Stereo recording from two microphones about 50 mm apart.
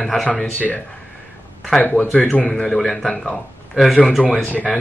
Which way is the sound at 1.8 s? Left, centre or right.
Left.